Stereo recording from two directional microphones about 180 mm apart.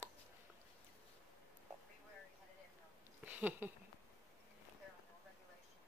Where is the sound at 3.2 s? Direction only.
10° right (ahead or behind).